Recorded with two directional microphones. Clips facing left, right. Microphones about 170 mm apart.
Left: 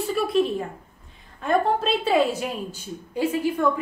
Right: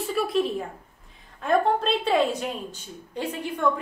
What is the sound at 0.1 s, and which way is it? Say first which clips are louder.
A woman's voice: left 2 dB; centre (ahead or behind).